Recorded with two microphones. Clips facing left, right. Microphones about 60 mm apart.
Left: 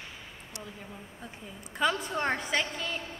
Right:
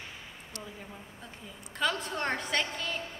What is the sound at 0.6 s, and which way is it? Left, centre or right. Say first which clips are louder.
Speech: left 1 dB; centre.